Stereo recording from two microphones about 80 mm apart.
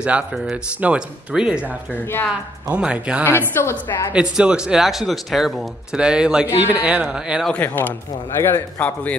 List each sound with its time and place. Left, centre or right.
0.0 s speech: centre
3.3 s a man's voice: left
4.1 s speech: centre
6.4 s speech: right
7.5 s a man's voice: left